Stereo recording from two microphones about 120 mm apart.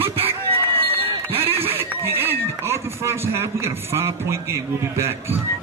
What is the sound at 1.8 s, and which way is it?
Speech, 20° right (ahead or behind).